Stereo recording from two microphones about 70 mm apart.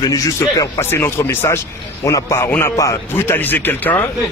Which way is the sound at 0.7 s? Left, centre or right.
Left.